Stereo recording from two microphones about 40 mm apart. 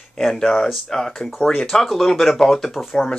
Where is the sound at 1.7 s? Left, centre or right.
Centre.